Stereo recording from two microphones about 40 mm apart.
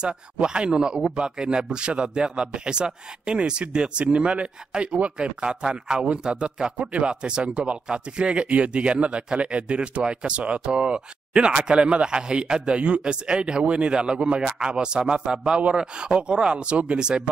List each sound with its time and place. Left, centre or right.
0.0 s a man's voice: right